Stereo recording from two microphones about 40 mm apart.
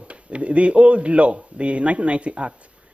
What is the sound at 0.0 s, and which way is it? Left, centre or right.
Speech, right.